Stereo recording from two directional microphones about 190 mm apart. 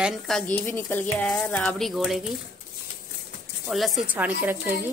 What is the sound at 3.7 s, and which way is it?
A woman's voice, centre (ahead or behind).